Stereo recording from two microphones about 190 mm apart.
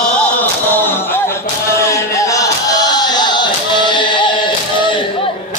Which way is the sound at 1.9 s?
15° left (ahead or behind).